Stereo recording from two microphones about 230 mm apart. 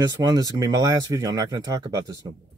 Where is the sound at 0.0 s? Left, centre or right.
Centre.